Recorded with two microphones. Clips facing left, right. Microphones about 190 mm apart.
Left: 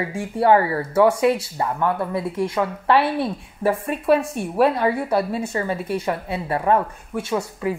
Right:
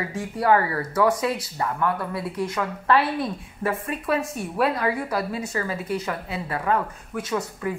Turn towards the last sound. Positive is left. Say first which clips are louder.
# left 3 dB
turn(degrees=25)  # may be behind; listen again after turning